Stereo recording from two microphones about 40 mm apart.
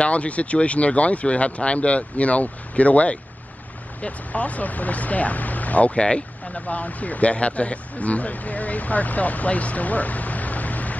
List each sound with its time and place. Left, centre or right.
0.0 s speech: left